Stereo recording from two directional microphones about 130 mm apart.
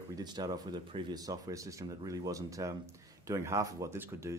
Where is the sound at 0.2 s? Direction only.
30° right (ahead or behind).